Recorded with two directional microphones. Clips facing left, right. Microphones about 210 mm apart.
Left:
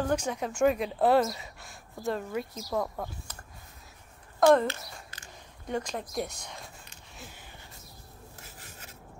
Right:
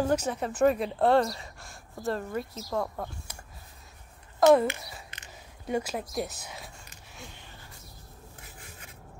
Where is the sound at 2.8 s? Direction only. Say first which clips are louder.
Even; centre (ahead or behind).